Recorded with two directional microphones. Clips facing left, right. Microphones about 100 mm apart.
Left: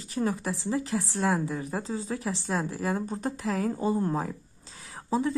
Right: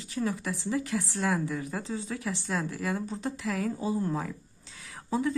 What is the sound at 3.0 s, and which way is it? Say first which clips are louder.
A woman's voice: left 2 dB; 45° left (ahead or behind).